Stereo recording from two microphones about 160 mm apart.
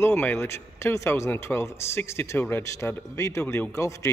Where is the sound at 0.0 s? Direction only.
15° left (ahead or behind).